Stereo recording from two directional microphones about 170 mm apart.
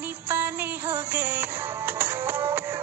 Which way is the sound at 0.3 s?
10° right (ahead or behind).